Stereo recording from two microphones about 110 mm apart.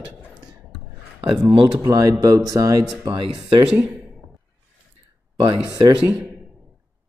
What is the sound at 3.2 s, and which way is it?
Speech, 50° right (ahead or behind).